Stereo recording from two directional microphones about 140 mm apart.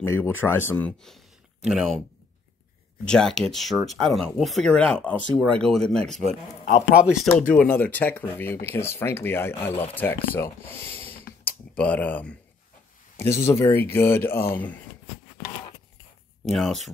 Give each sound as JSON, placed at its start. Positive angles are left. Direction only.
{"t": 0.0, "sound": "speech", "side_deg": 15}
{"t": 3.1, "sound": "speech", "side_deg": 5}
{"t": 16.4, "sound": "speech", "side_deg": 0}